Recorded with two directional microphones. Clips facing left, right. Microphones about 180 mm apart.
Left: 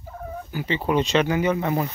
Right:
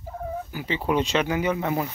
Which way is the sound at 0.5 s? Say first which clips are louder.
Left 3 dB; 5° right (ahead or behind).